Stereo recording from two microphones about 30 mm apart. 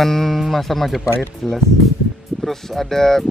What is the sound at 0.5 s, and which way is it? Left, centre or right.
Speech, centre.